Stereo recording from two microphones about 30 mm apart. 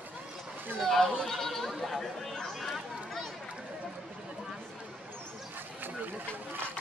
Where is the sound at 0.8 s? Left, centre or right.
Centre.